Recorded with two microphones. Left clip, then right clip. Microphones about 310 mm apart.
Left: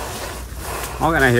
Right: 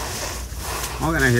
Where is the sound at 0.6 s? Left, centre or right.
Centre.